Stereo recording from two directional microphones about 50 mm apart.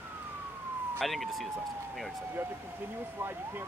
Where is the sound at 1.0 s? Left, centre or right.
Centre.